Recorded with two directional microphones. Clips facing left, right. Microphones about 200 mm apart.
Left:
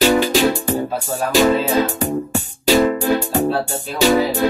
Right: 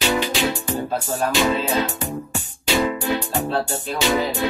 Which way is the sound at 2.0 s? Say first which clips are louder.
Left 7 dB; 40° left (ahead or behind).